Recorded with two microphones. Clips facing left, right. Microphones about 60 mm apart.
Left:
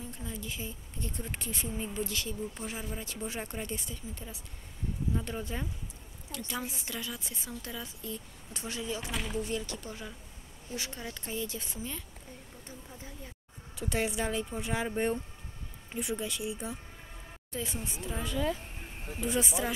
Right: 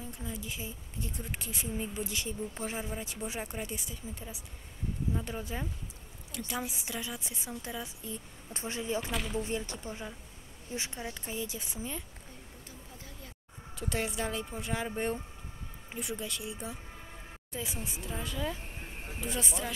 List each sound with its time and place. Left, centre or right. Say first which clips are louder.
0.2 s speech: even; centre
8.5 s speech: right 3 dB; right
9.1 s speech: right 1 dB; centre
9.4 s speech: even; right
11.1 s speech: left 1 dB; centre
13.7 s speech: left 2 dB; centre
18.8 s a sound: left 1 dB; centre
19.2 s speech: left 5 dB; centre